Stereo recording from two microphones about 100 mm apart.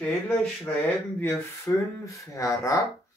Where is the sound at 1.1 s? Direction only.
25° left (ahead or behind).